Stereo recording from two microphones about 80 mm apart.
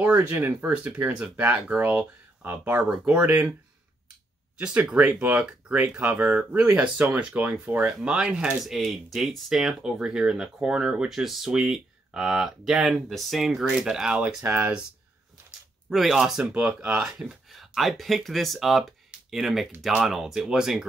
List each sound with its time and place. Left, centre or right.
0.0 s speech: right
4.6 s speech: centre
4.9 s speech: right
5.5 s speech: centre
8.6 s speech: centre
14.4 s speech: right
15.9 s speech: centre